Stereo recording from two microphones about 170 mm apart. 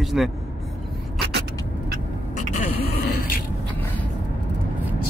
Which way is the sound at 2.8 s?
65° left (ahead or behind).